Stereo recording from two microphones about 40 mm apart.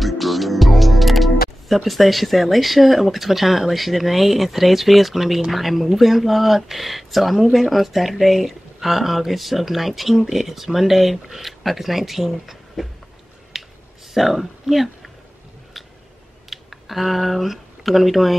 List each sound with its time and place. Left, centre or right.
0.0 s speech: centre
13.5 s a sound: centre
14.1 s speech: centre
16.4 s speech: centre